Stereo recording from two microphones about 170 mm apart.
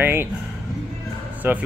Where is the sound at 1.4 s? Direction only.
10° right (ahead or behind).